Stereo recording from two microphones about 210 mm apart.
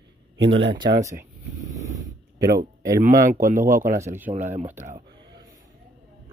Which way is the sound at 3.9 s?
10° right (ahead or behind).